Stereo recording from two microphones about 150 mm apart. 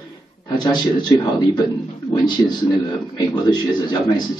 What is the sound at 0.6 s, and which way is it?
A man's voice, 25° left (ahead or behind).